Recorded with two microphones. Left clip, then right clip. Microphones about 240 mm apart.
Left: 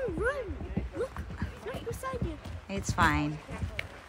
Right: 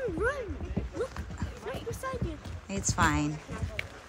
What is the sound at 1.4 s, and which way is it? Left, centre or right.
Dog, centre.